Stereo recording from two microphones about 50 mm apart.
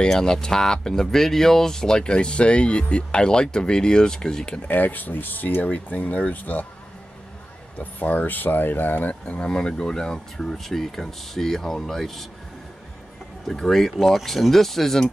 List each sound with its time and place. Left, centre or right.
0.0 s speech: centre
4.6 s speech: left
7.8 s speech: left
9.2 s speech: left; by 12.3 s centre
13.5 s speech: centre